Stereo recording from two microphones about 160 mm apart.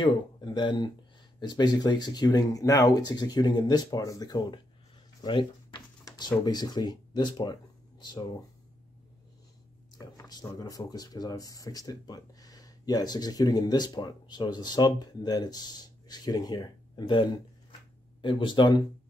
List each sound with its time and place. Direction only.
0.0 s speech: 30° left (ahead or behind)
9.9 s speech: 25° left (ahead or behind)